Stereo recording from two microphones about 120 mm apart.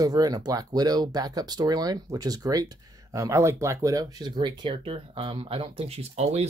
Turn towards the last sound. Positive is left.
turn(degrees=-65)  # may be behind; listen again after turning